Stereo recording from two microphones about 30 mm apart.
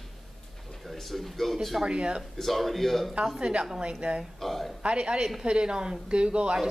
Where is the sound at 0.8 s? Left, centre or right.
Centre.